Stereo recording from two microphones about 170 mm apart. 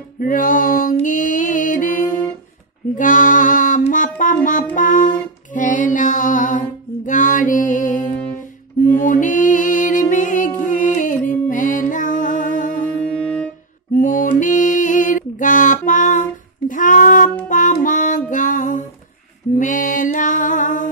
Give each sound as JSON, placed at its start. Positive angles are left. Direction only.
{"t": 0.2, "sound": "a sound", "side_deg": 55}
{"t": 0.9, "sound": "music", "side_deg": 50}
{"t": 13.0, "sound": "music", "side_deg": 5}
{"t": 13.9, "sound": "mantra", "side_deg": 50}
{"t": 14.4, "sound": "music", "side_deg": 50}